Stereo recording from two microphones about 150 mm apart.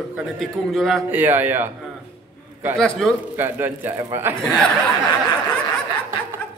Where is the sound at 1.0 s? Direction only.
10° right (ahead or behind).